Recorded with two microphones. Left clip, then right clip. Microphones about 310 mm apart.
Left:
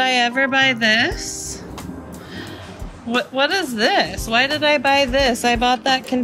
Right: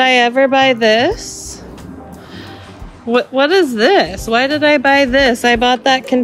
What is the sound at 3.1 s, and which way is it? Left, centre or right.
Speech, right.